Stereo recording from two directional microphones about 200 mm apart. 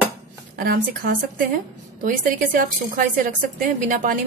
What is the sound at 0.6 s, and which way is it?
A woman's voice, 50° right (ahead or behind).